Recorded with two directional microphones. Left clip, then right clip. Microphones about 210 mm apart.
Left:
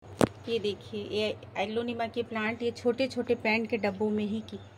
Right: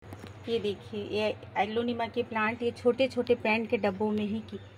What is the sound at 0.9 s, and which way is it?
Speech, centre (ahead or behind).